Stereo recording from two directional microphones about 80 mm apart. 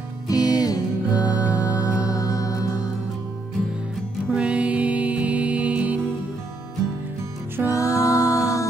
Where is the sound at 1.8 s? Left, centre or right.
Left.